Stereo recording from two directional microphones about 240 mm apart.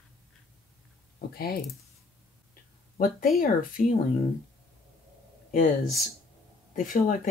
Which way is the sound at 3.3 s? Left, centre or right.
Left.